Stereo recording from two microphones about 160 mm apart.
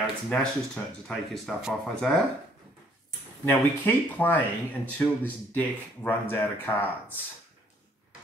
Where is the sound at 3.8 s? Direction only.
10° left (ahead or behind).